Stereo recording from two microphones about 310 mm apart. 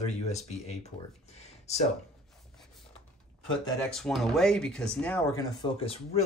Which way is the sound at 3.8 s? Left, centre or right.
Centre.